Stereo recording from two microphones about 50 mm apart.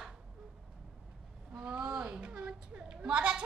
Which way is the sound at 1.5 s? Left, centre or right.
Right.